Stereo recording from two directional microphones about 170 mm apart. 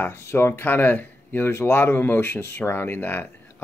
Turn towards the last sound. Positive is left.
turn(degrees=15)  # may be behind; listen again after turning